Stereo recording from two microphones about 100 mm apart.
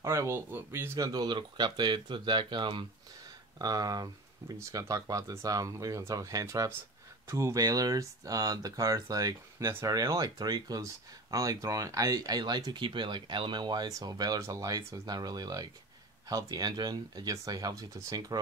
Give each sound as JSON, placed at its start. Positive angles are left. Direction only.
{"t": 0.0, "sound": "speech", "side_deg": -30}
{"t": 0.9, "sound": "speech", "side_deg": -40}
{"t": 3.5, "sound": "speech", "side_deg": -40}
{"t": 9.7, "sound": "speech", "side_deg": -25}
{"t": 9.9, "sound": "speech", "side_deg": -35}